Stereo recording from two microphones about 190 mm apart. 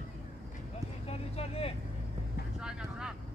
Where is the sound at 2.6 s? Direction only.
5° right (ahead or behind).